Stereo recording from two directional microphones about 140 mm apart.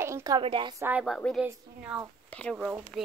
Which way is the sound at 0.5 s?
40° right (ahead or behind).